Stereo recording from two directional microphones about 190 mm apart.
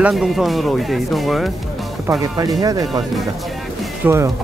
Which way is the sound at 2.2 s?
20° right (ahead or behind).